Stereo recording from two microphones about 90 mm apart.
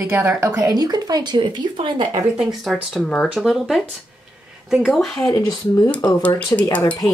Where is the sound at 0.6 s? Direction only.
45° right (ahead or behind).